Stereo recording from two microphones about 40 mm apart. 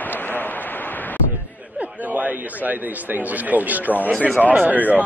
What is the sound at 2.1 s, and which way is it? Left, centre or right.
A man's voice, right.